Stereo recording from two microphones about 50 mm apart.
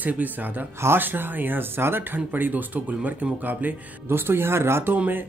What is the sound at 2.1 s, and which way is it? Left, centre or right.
Speech, right.